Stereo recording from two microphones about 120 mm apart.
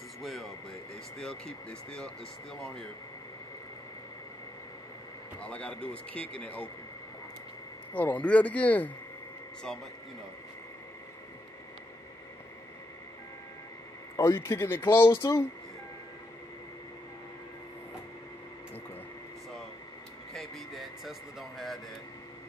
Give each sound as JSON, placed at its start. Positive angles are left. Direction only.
{"t": 0.2, "sound": "a sound", "side_deg": 0}
{"t": 1.1, "sound": "speech", "side_deg": 5}
{"t": 5.4, "sound": "speech", "side_deg": 10}
{"t": 7.9, "sound": "speech", "side_deg": 10}
{"t": 14.1, "sound": "speech", "side_deg": 25}
{"t": 20.3, "sound": "a sound", "side_deg": 0}